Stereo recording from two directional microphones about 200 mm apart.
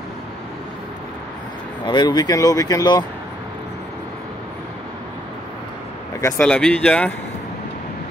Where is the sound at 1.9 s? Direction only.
20° left (ahead or behind).